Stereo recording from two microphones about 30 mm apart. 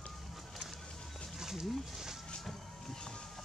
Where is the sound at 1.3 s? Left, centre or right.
Centre.